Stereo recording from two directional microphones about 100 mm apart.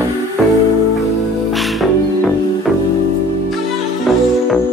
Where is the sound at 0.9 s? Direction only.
Centre (ahead or behind).